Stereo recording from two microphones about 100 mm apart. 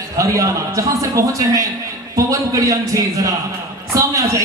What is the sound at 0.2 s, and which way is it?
A man's voice, 35° right (ahead or behind).